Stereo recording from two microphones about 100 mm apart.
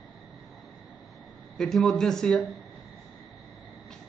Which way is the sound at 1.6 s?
Centre (ahead or behind).